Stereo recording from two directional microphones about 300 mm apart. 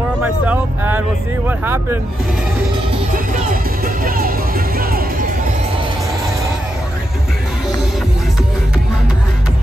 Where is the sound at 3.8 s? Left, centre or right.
Right.